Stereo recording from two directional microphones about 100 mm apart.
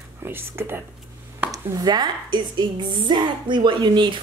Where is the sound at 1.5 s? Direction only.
40° right (ahead or behind).